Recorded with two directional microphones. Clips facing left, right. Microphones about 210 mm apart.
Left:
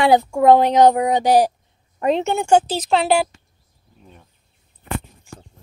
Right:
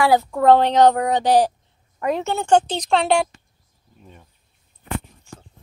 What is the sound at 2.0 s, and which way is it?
A woman's voice, 20° left (ahead or behind).